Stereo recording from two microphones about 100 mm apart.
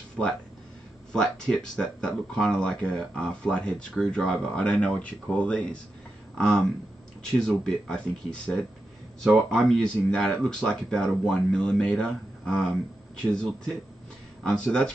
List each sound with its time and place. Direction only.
0.2 s speech: 10° left (ahead or behind)